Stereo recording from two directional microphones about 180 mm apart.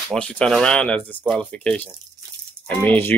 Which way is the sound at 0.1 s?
5° left (ahead or behind).